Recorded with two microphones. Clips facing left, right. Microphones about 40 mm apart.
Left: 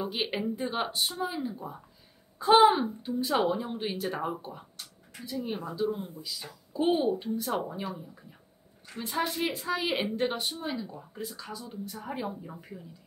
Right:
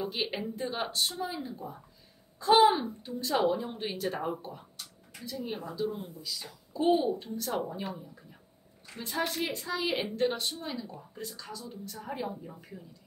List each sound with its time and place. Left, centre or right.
0.0 s speech: centre